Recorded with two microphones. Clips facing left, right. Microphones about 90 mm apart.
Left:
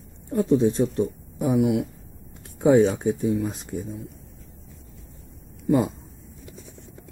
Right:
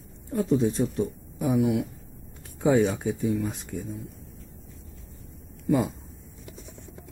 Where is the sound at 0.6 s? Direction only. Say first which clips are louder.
Left 4 dB; 20° left (ahead or behind).